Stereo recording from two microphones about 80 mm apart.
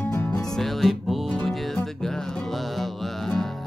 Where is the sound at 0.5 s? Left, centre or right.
Centre.